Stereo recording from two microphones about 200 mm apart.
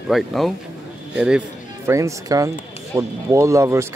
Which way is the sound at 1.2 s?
5° right (ahead or behind).